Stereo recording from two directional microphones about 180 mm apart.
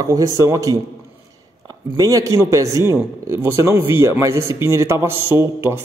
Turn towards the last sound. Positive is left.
turn(degrees=-15)  # may be behind; listen again after turning